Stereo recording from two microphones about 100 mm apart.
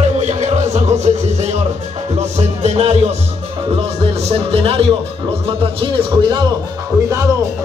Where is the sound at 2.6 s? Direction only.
90° right.